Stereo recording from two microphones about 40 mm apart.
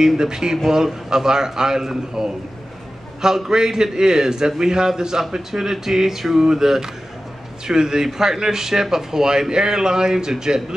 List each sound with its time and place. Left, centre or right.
0.2 s a man's voice: centre